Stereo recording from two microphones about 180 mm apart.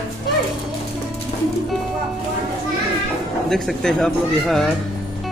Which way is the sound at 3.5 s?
5° left (ahead or behind).